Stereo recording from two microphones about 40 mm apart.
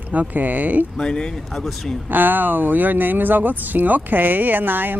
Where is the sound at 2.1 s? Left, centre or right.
Right.